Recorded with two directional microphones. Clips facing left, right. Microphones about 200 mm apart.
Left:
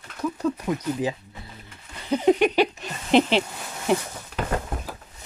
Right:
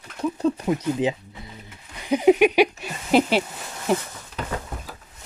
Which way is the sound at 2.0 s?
10° right (ahead or behind).